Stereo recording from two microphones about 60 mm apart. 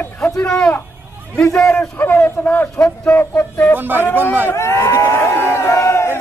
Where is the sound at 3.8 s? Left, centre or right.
Right.